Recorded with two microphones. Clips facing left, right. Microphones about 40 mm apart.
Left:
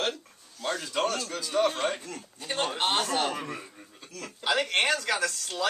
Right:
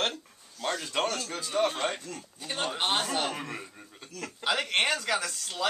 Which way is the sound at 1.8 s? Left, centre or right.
Centre.